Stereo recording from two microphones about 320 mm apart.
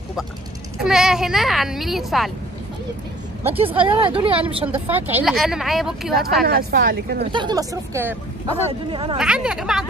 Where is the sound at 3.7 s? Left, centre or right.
Centre.